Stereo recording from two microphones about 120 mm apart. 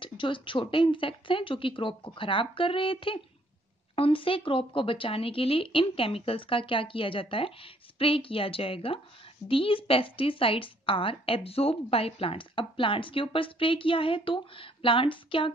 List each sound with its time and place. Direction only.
0.0 s a woman's voice: 45° left (ahead or behind)